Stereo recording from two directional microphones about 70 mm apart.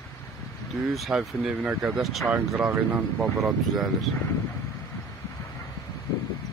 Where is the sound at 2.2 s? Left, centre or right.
Centre.